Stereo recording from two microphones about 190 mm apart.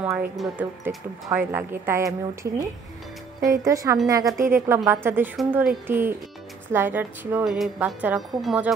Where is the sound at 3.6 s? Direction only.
15° right (ahead or behind).